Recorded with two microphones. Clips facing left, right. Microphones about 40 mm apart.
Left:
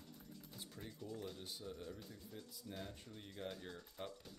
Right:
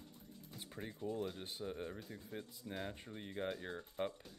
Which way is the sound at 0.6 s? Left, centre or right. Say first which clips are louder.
Right 6 dB; right.